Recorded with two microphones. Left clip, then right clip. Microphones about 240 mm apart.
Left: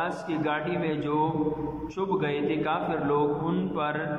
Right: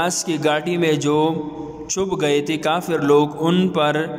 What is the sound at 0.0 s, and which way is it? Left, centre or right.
A man's voice, right.